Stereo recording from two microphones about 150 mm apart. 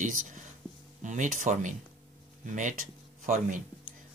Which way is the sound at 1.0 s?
55° right (ahead or behind).